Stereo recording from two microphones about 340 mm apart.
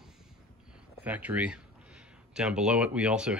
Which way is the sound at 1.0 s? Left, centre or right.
Centre.